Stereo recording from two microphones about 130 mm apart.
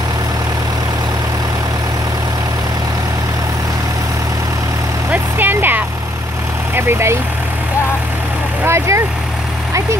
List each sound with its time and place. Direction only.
5.1 s vehicle: 15° right (ahead or behind)
8.6 s speech: 20° right (ahead or behind)